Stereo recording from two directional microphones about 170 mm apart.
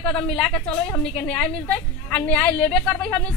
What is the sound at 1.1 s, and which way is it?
A woman's voice, 5° left (ahead or behind).